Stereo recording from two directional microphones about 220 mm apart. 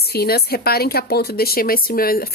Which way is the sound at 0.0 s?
45° left (ahead or behind).